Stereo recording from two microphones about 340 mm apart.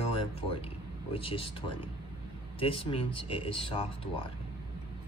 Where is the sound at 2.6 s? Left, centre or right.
Centre.